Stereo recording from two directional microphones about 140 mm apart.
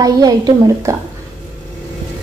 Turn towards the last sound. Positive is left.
turn(degrees=-30)  # may be behind; listen again after turning